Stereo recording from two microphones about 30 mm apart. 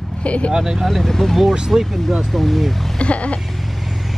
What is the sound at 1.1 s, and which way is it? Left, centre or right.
Speech, centre.